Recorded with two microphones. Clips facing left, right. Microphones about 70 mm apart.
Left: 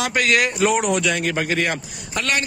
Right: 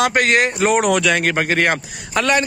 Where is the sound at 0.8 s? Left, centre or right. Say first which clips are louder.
Right 4 dB; right.